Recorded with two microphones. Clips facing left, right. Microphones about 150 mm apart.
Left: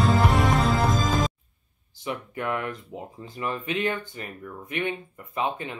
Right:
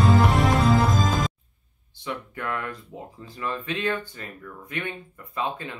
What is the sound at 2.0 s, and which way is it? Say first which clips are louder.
Speech: left 2 dB; 20° left (ahead or behind).